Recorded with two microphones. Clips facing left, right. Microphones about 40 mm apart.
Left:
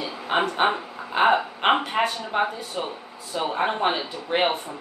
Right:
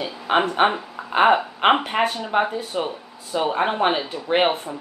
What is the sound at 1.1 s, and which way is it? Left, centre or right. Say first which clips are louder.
Speech: right 3 dB; centre.